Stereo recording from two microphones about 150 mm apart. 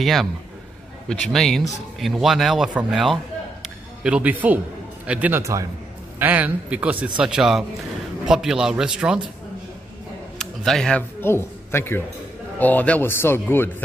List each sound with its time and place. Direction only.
0.0 s a man's voice: centre (ahead or behind)
10.4 s speech: centre (ahead or behind)